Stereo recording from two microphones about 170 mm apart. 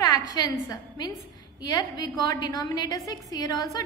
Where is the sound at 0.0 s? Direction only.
20° left (ahead or behind).